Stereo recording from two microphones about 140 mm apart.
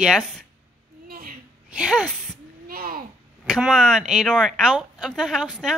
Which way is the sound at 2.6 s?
90° right.